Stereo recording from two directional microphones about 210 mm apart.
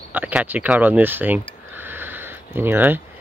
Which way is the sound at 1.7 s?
10° right (ahead or behind).